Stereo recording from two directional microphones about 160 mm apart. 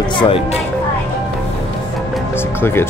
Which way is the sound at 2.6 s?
15° left (ahead or behind).